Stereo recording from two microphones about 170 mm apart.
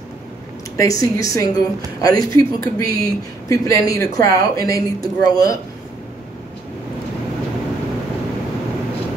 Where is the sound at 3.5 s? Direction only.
20° left (ahead or behind).